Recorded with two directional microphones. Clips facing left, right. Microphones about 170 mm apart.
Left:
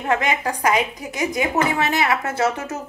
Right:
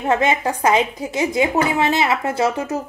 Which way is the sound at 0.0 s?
20° right (ahead or behind).